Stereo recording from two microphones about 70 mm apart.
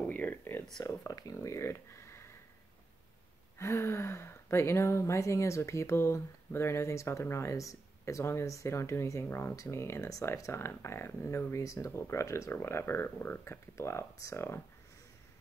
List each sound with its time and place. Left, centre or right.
0.1 s a sound: left
0.8 s speech: left
1.4 s speech: left
3.5 s speech: left
11.5 s speech: left